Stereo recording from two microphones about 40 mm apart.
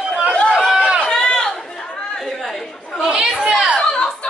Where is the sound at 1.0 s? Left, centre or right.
Centre.